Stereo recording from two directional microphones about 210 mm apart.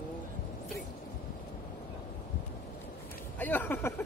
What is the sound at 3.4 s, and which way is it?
Speech, 10° left (ahead or behind).